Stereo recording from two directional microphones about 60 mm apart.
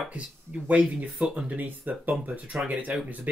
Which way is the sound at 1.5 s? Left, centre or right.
Right.